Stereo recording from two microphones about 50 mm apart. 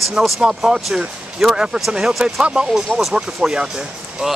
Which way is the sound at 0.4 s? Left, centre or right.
Centre.